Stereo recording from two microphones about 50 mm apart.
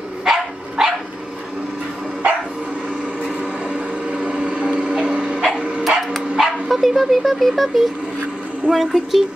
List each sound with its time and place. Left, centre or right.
0.2 s dog: centre
4.1 s a sound: right
5.9 s dog: centre
8.7 s speech: centre